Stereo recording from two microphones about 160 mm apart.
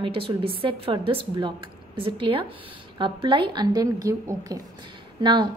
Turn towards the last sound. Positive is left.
turn(degrees=-30)  # may be behind; listen again after turning